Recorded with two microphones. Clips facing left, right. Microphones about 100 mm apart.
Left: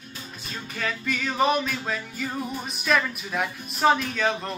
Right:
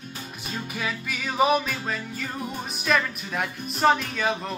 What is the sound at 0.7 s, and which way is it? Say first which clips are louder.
Music: left 4 dB; 10° right (ahead or behind).